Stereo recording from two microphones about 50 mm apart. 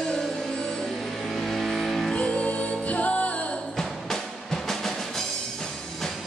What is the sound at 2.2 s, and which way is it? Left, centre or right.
Music, left.